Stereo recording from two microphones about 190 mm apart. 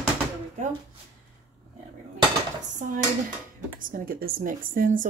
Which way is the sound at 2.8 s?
40° right (ahead or behind).